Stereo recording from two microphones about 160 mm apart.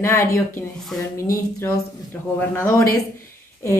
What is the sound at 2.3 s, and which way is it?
Speech, 15° left (ahead or behind).